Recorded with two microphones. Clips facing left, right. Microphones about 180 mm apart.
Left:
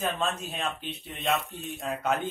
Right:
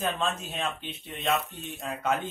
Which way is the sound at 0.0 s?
Centre (ahead or behind).